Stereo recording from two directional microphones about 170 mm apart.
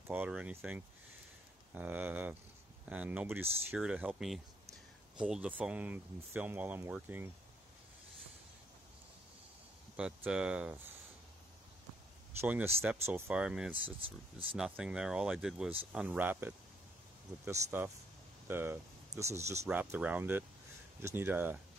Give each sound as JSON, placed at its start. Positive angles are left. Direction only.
{"t": 0.1, "sound": "speech", "side_deg": -10}
{"t": 9.9, "sound": "speech", "side_deg": -5}
{"t": 12.4, "sound": "speech", "side_deg": -10}